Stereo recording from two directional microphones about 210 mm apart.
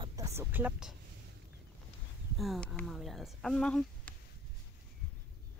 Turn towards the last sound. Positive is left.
turn(degrees=5)  # may be behind; listen again after turning